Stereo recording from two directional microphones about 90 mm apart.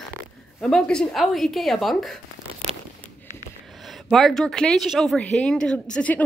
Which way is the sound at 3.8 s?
Centre (ahead or behind).